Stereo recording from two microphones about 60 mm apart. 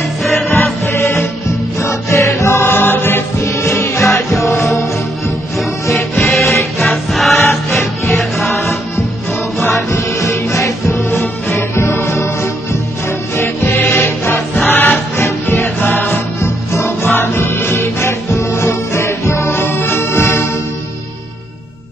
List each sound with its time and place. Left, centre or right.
0.2 s music: centre
1.8 s music: left
2.6 s music: left
3.4 s music: left
6.1 s music: centre
9.6 s music: left
13.4 s music: left